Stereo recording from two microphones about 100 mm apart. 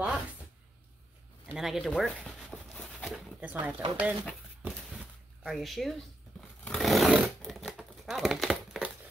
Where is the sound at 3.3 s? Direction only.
15° right (ahead or behind).